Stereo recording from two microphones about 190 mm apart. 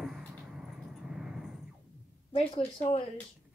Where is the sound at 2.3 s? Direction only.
30° left (ahead or behind).